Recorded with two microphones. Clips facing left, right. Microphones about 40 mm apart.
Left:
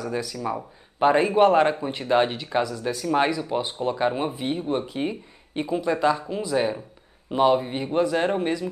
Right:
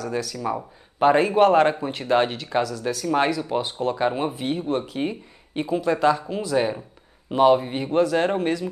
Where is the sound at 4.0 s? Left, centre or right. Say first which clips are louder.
Even; centre.